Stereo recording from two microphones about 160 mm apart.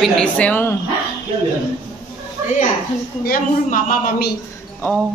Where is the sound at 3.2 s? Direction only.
60° left (ahead or behind).